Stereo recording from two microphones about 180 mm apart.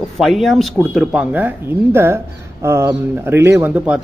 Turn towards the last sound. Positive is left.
turn(degrees=-10)  # may be behind; listen again after turning